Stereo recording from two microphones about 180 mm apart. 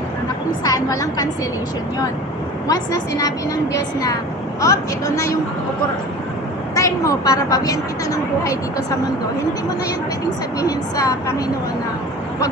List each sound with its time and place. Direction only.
0.7 s a woman's voice: 20° left (ahead or behind)
2.7 s speech: 20° left (ahead or behind)
6.7 s speech: 15° left (ahead or behind)
10.6 s speech: 20° left (ahead or behind)